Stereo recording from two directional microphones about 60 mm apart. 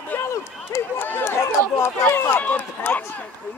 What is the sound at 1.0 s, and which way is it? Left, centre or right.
Speech, left.